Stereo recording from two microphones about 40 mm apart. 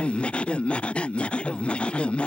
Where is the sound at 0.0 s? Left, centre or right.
Left.